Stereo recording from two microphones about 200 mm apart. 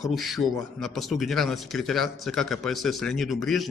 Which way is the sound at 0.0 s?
Centre (ahead or behind).